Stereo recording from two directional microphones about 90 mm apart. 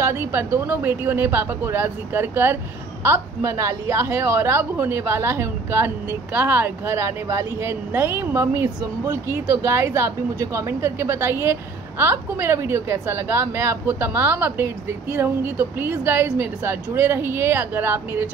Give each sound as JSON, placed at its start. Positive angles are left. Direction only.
{"t": 0.0, "sound": "a woman's voice", "side_deg": -30}
{"t": 7.0, "sound": "a woman's voice", "side_deg": -35}